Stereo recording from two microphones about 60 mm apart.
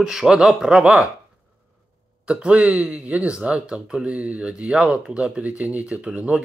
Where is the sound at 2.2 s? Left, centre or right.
Centre.